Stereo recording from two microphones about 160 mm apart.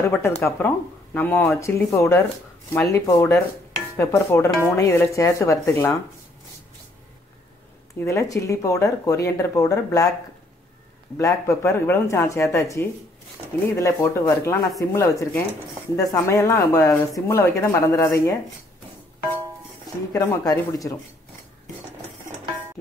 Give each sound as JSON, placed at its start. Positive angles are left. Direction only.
{"t": 0.0, "sound": "speech", "side_deg": 15}
{"t": 8.0, "sound": "speech", "side_deg": 20}
{"t": 11.1, "sound": "speech", "side_deg": 20}
{"t": 20.1, "sound": "speech", "side_deg": 20}